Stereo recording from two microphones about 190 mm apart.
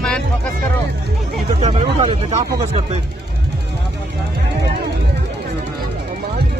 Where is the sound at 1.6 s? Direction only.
35° right (ahead or behind).